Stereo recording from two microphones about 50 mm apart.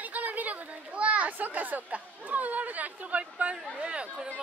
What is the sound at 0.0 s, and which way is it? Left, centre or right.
Speech, right.